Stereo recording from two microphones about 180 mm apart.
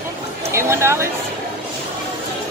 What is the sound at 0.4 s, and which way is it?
Chatter, 15° right (ahead or behind).